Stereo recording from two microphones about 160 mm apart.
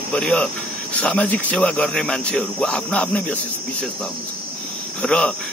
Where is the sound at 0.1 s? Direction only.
5° left (ahead or behind).